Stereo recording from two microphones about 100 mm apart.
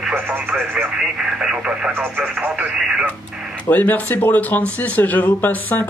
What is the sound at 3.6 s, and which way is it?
Speech, 15° left (ahead or behind).